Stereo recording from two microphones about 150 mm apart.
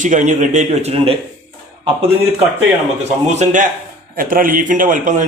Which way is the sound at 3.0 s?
50° right (ahead or behind).